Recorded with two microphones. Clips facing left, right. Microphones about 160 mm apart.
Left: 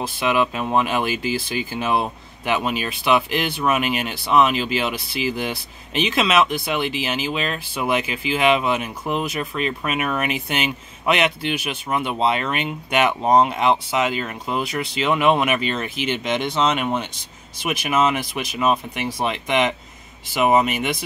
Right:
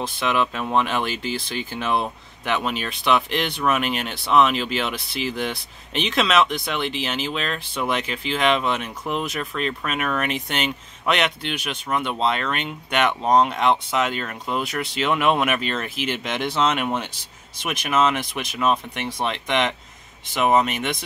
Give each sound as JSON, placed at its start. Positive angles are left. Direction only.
{"t": 0.0, "sound": "speech", "side_deg": 5}